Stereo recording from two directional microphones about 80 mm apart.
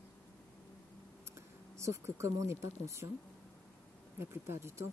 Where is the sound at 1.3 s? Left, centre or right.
Right.